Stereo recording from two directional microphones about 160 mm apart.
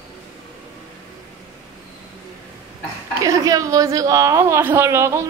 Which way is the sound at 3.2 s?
20° right (ahead or behind).